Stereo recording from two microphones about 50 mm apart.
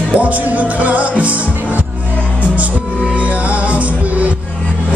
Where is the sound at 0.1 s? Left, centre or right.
Right.